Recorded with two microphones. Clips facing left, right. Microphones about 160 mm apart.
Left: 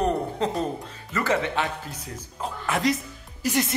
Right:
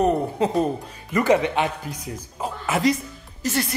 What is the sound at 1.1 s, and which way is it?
Speech, 15° right (ahead or behind).